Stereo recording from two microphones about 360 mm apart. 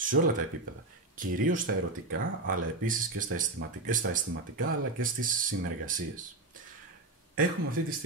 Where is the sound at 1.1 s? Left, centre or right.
Right.